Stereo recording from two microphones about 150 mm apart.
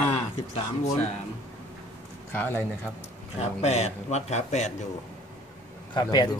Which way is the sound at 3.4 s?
45° left (ahead or behind).